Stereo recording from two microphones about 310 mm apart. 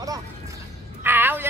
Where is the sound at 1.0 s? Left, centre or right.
Centre.